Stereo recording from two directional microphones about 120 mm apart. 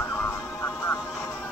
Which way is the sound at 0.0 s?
20° left (ahead or behind).